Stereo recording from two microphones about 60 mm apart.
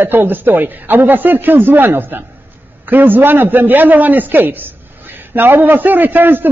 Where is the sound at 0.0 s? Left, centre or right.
Right.